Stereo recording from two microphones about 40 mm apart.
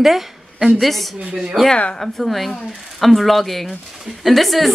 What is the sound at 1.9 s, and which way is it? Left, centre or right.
Speech, centre.